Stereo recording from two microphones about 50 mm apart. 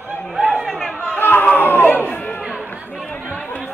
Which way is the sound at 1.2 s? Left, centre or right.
Left.